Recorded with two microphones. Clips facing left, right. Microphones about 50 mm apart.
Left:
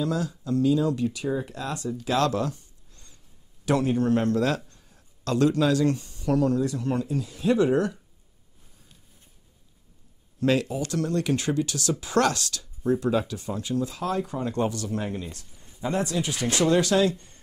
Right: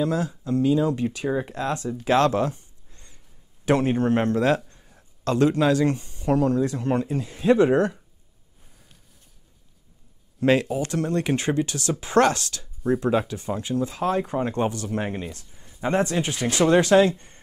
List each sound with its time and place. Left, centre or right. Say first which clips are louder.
0.0 s a man's voice: right 3 dB; right
10.4 s speech: right 3 dB; right